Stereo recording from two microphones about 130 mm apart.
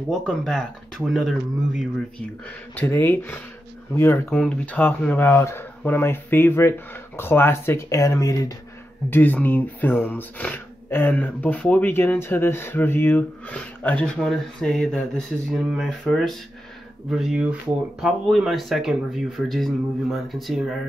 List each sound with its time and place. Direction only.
0.1 s speech: 5° left (ahead or behind)
2.1 s speech: 10° left (ahead or behind)
9.1 s speech: 15° left (ahead or behind)